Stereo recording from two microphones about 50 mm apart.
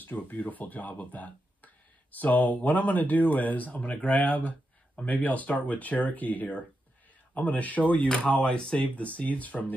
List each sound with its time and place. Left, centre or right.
0.0 s speech: left
8.9 s speech: left